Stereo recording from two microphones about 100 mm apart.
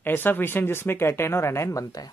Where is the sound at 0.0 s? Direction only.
20° left (ahead or behind).